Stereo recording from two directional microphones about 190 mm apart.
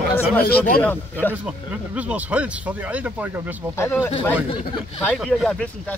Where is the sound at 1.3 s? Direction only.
5° right (ahead or behind).